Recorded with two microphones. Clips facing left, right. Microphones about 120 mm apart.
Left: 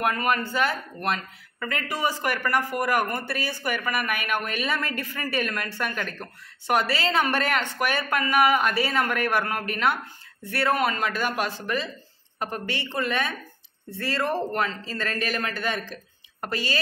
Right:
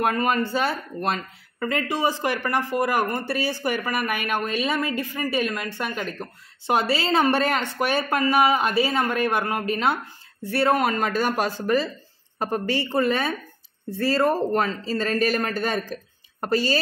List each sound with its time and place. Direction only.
0.0 s speech: 35° right (ahead or behind)
4.6 s speech: 20° right (ahead or behind)
6.7 s speech: 30° right (ahead or behind)